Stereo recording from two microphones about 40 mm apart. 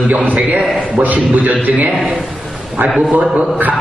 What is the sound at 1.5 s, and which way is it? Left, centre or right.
Speech, right.